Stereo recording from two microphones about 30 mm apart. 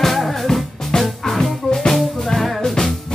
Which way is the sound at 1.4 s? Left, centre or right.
Centre.